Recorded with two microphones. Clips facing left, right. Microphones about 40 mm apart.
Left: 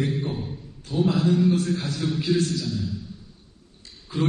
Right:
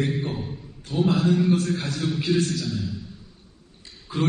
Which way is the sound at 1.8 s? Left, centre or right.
Centre.